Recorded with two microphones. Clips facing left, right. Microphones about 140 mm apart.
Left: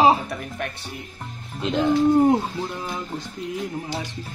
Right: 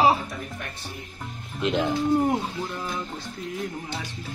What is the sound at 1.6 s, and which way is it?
Speech, centre (ahead or behind).